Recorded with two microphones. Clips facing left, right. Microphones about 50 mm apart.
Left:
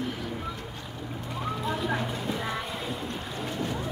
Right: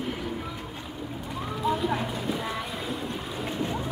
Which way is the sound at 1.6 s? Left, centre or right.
Centre.